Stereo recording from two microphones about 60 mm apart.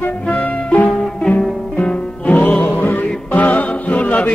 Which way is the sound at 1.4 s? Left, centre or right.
Centre.